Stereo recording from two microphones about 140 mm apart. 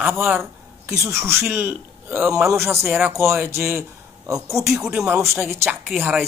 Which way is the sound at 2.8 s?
Centre (ahead or behind).